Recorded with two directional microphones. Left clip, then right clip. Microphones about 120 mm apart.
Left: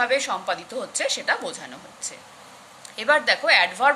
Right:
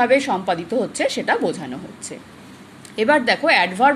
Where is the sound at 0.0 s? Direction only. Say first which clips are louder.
Right 6 dB; 20° right (ahead or behind).